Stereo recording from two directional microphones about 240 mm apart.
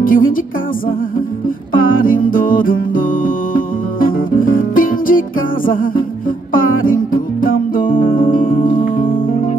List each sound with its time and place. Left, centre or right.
0.0 s music: left
1.8 s music: left
6.5 s music: left